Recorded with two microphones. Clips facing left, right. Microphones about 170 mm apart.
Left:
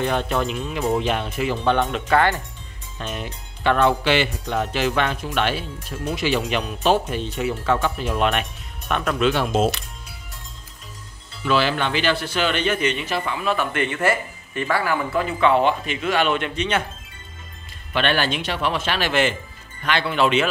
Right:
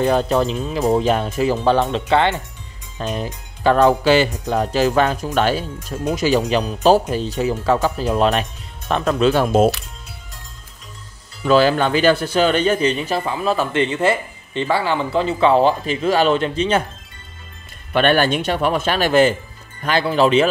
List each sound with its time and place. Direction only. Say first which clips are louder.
0.0 s a man's voice: right 6 dB; 35° right (ahead or behind); by 2.4 s 20° right (ahead or behind)
3.0 s a man's voice: right 6 dB; 35° right (ahead or behind)
11.4 s a man's voice: right 6 dB; 40° right (ahead or behind)
17.9 s a man's voice: right 6 dB; 50° right (ahead or behind)